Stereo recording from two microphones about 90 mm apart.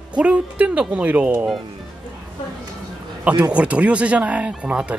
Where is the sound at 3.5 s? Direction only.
15° right (ahead or behind).